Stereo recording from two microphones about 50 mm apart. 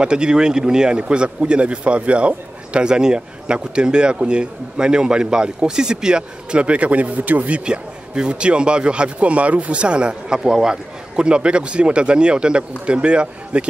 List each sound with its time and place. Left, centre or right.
0.0 s speech: centre